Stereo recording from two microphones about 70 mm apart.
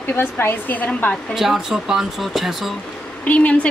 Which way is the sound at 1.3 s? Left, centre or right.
Centre.